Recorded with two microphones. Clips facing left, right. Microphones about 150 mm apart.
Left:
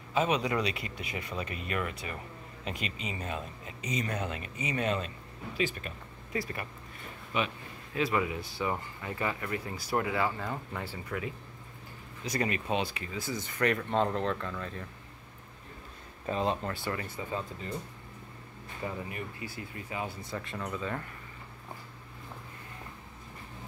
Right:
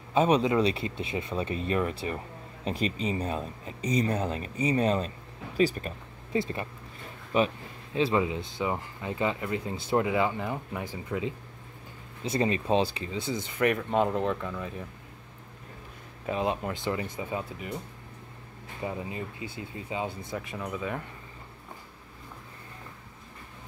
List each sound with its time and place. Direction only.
0.1 s speech: 30° right (ahead or behind)
6.3 s speech: 25° right (ahead or behind); by 14.9 s 10° right (ahead or behind)
16.3 s speech: 10° right (ahead or behind)
18.9 s speech: 20° right (ahead or behind)
20.3 s speech: 5° right (ahead or behind)